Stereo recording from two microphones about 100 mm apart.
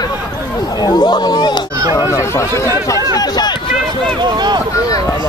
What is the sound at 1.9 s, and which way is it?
Speech, 30° left (ahead or behind).